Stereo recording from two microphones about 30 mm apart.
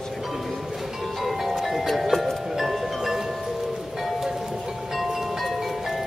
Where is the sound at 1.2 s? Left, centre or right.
Centre.